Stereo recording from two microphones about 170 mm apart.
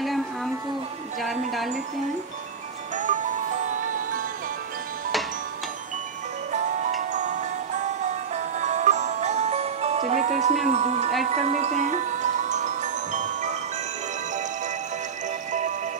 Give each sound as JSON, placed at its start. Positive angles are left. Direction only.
{"t": 1.2, "sound": "a sound", "side_deg": 0}
{"t": 3.0, "sound": "music", "side_deg": -50}
{"t": 6.5, "sound": "music", "side_deg": -45}
{"t": 8.5, "sound": "music", "side_deg": -45}
{"t": 11.2, "sound": "glockenspiel", "side_deg": -45}